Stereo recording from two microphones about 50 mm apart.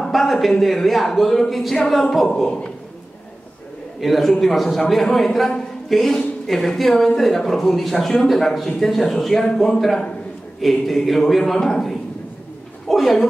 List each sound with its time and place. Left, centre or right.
0.1 s a man's voice: centre
2.4 s a man's voice: centre
4.0 s a man's voice: centre